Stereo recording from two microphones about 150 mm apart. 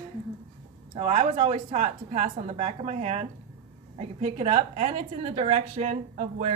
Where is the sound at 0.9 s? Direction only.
40° right (ahead or behind).